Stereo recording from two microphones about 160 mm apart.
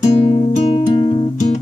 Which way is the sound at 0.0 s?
40° left (ahead or behind).